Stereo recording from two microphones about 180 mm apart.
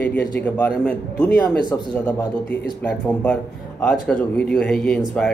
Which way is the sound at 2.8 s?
10° left (ahead or behind).